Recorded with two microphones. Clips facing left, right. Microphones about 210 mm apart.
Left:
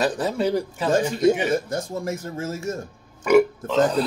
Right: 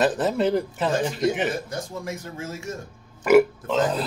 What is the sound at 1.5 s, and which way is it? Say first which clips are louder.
Speech: left 6 dB; 45° left (ahead or behind).